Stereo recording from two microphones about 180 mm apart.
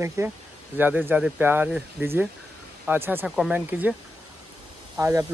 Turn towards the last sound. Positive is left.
turn(degrees=-15)  # may be behind; listen again after turning